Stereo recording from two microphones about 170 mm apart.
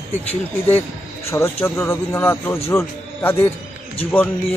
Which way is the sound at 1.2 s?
15° left (ahead or behind).